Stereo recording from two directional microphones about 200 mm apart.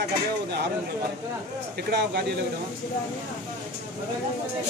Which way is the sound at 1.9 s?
50° right (ahead or behind).